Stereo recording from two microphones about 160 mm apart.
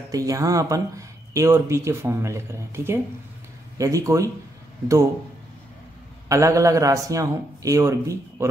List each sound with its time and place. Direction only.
0.1 s a man's voice: 20° right (ahead or behind)
6.2 s a man's voice: 20° right (ahead or behind)